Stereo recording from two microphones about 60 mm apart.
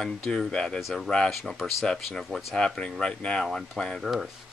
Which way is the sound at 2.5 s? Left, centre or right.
Centre.